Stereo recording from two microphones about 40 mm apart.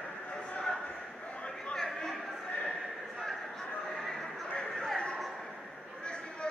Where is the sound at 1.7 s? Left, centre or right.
Centre.